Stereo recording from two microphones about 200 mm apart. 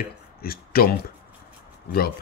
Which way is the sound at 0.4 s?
50° left (ahead or behind).